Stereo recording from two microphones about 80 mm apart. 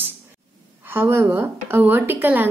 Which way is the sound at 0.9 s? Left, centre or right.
Right.